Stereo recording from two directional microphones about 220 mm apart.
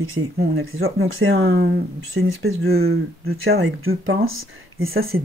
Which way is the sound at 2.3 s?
65° right (ahead or behind).